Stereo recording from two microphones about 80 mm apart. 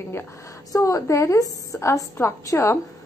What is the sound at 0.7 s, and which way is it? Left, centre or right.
A woman's voice, left.